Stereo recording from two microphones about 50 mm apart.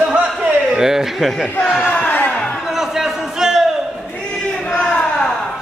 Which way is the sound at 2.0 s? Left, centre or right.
Left.